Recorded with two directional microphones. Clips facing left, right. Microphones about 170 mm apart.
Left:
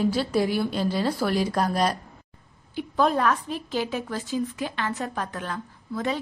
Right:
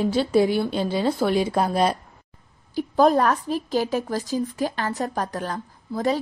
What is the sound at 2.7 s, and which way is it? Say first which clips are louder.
A woman's voice: right 5 dB; 40° right (ahead or behind).